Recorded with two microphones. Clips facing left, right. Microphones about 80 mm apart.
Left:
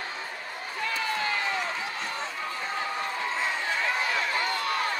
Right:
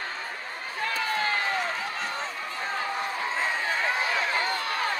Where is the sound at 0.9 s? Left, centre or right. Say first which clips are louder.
Right 2 dB; right.